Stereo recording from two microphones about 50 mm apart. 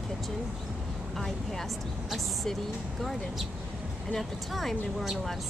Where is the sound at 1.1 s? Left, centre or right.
Centre.